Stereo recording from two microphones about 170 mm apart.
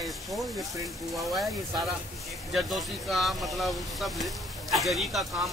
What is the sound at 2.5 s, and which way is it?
Speech, centre (ahead or behind).